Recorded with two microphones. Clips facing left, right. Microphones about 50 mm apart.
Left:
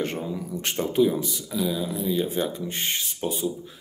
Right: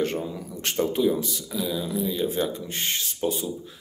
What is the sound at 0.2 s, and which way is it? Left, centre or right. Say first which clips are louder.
Speech: left 2 dB; centre.